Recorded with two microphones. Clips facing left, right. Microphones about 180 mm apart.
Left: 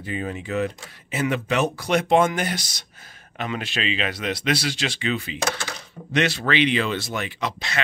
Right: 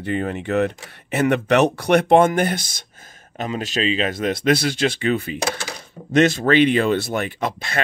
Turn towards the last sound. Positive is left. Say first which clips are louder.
# right 4 dB
turn(degrees=-50)  # may be behind; listen again after turning